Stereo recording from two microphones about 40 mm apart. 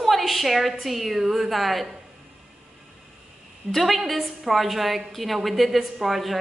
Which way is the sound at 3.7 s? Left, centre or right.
Centre.